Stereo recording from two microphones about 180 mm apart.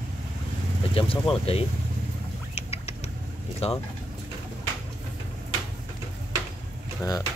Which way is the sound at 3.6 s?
35° left (ahead or behind).